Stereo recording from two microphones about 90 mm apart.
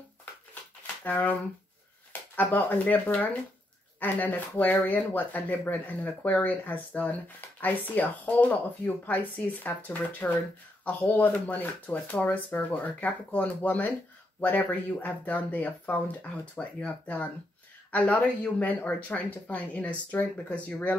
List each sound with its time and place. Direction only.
1.0 s speech: 20° left (ahead or behind)